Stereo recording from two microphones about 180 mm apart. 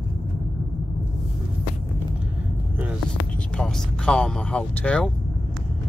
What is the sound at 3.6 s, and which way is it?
Speech, 5° left (ahead or behind).